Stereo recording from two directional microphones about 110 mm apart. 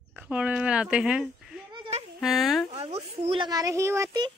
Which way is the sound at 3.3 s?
40° right (ahead or behind).